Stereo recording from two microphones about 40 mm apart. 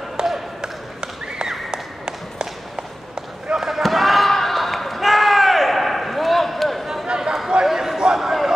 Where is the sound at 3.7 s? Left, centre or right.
Centre.